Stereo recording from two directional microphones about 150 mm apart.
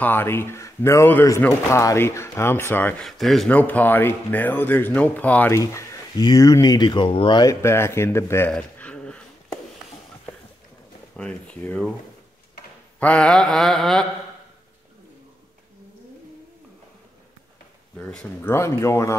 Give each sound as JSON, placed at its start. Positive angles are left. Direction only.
{"t": 0.0, "sound": "speech", "side_deg": 15}
{"t": 3.1, "sound": "speech", "side_deg": 0}
{"t": 8.5, "sound": "a sound", "side_deg": 10}
{"t": 11.1, "sound": "speech", "side_deg": 10}
{"t": 13.0, "sound": "a sound", "side_deg": 5}
{"t": 17.9, "sound": "speech", "side_deg": 5}
{"t": 18.5, "sound": "speech", "side_deg": 15}